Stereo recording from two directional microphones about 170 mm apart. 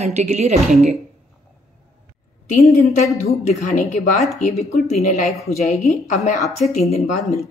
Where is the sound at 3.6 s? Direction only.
45° left (ahead or behind).